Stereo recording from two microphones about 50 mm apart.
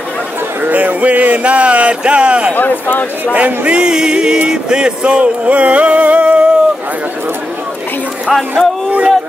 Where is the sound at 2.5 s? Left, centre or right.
Left.